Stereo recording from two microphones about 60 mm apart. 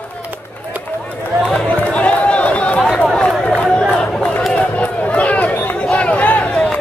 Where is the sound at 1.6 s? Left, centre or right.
Left.